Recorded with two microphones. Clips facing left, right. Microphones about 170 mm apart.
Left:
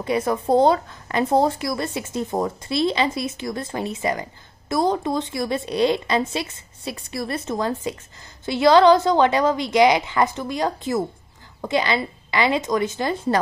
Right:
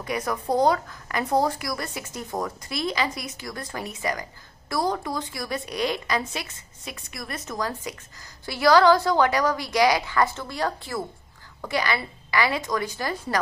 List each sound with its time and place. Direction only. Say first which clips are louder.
0.0 s a woman's voice: left 6 dB; 25° left (ahead or behind)